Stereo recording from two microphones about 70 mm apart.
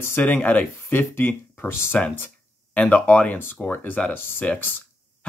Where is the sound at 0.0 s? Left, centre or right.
Left.